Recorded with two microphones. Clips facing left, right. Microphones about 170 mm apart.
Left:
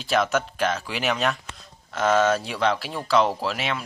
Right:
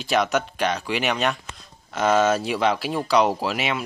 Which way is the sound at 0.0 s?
Centre (ahead or behind).